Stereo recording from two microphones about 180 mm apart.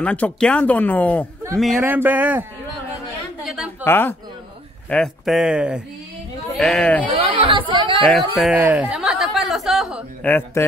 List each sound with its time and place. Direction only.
0.0 s speech: 5° left (ahead or behind); by 2.4 s 10° right (ahead or behind)
3.4 s a sound: 5° right (ahead or behind)
3.8 s speech: 10° left (ahead or behind)
7.1 s speech: 30° right (ahead or behind)
8.0 s a sound: centre (ahead or behind)
10.2 s speech: 10° left (ahead or behind)